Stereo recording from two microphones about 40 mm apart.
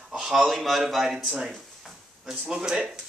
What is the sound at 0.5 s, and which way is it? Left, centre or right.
A man's voice, centre.